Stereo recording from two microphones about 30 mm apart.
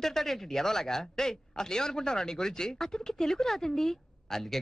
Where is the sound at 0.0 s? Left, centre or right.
Centre.